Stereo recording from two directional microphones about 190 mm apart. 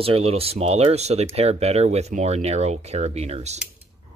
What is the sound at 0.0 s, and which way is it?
Speech, 30° right (ahead or behind).